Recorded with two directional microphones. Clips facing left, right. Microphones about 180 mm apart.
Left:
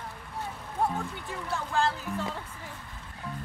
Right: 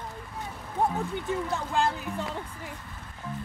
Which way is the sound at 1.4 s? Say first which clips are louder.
Left 2 dB; 20° right (ahead or behind).